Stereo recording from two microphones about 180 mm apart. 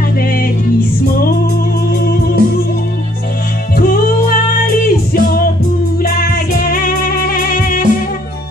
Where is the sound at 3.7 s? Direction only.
55° left (ahead or behind).